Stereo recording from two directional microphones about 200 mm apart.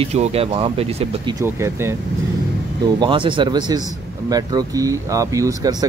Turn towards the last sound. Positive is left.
turn(degrees=-15)  # may be behind; listen again after turning